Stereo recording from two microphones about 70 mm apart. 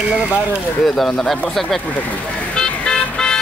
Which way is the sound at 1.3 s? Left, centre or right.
Centre.